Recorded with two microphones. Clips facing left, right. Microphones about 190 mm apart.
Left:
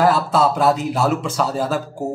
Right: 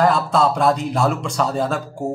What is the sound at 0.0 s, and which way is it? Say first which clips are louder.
Speech: left 1 dB; centre (ahead or behind).